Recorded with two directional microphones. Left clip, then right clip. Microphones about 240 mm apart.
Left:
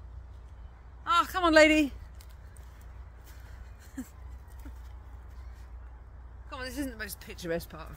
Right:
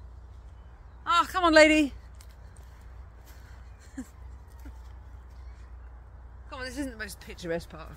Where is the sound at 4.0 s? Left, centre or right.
Centre.